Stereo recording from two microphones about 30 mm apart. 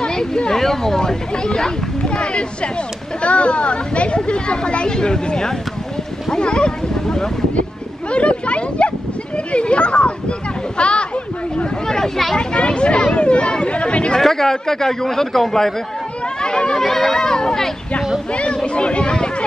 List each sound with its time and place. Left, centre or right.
0.0 s a sound: left
0.5 s a man's voice: centre
0.9 s speech: left
8.1 s a sound: left
12.4 s speech: left
14.2 s a man's voice: centre
16.4 s chatter: left
16.7 s a man's voice: centre
17.2 s speech: left
18.3 s speech: left